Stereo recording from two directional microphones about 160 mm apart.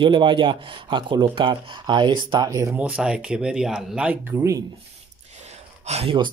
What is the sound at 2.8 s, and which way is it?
Speech, 5° right (ahead or behind).